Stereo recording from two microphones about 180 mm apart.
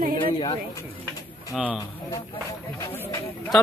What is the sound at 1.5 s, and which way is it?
Speech, 5° right (ahead or behind).